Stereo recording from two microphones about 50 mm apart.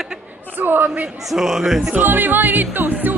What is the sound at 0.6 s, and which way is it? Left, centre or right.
Speech, right.